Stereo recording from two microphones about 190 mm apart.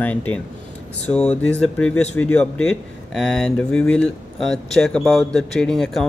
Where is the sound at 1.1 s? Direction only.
20° left (ahead or behind).